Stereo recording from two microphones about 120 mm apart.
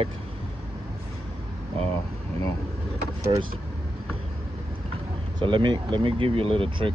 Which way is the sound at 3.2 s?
30° right (ahead or behind).